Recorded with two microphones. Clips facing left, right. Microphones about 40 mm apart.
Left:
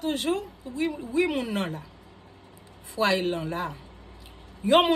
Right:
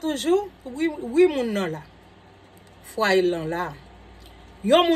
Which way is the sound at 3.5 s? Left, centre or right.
Right.